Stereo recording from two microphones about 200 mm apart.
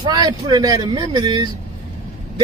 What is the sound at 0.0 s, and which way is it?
A man's voice, 20° right (ahead or behind).